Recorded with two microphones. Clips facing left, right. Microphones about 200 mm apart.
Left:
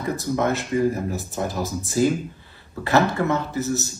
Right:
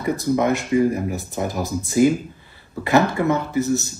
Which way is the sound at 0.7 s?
15° right (ahead or behind).